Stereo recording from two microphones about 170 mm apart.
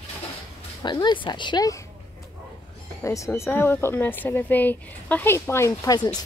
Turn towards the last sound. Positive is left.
turn(degrees=25)  # may be behind; listen again after turning